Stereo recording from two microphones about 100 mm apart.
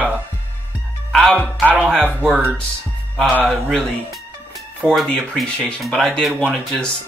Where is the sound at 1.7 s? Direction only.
10° right (ahead or behind).